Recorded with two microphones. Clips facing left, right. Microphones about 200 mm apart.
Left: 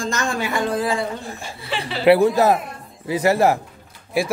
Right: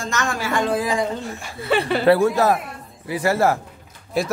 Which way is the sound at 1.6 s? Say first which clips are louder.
Right 8 dB; 55° right (ahead or behind).